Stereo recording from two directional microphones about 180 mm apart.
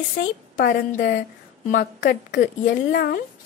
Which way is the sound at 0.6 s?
60° left (ahead or behind).